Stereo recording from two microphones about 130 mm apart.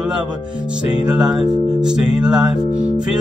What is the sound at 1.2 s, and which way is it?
Music, 5° right (ahead or behind).